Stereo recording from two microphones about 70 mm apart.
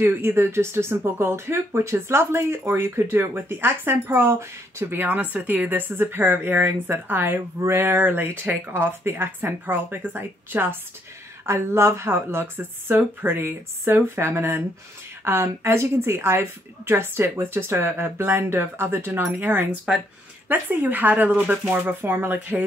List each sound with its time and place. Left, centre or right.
0.0 s speech: right